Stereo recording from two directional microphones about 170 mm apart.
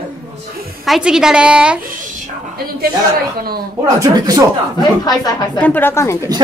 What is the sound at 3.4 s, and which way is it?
Speech, 60° right (ahead or behind).